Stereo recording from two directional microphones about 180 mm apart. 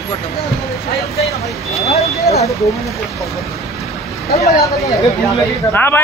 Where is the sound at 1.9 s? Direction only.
35° left (ahead or behind).